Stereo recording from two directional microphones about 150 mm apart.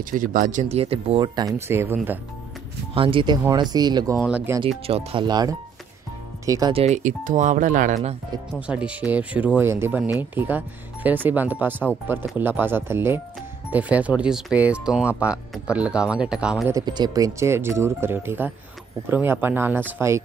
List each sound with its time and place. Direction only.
0.0 s speech: 60° right (ahead or behind); by 1.5 s 30° right (ahead or behind)
1.7 s speech: 15° right (ahead or behind)
2.9 s speech: 35° right (ahead or behind)
4.2 s speech: 10° right (ahead or behind)
4.8 s speech: 40° right (ahead or behind); by 6.7 s 20° right (ahead or behind)
6.7 s speech: 40° right (ahead or behind)
7.0 s speech: 60° right (ahead or behind)
8.5 s speech: 10° right (ahead or behind)
16.7 s speech: 30° right (ahead or behind)